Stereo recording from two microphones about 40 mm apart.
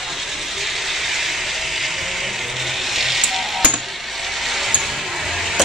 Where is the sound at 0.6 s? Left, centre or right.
Centre.